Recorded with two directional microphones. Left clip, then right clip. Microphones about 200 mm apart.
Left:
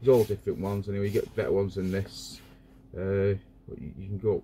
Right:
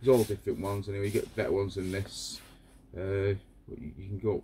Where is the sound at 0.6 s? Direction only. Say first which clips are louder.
Left 2 dB; 15° right (ahead or behind).